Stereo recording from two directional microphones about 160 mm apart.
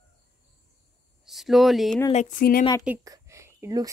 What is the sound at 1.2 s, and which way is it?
Speech, centre (ahead or behind).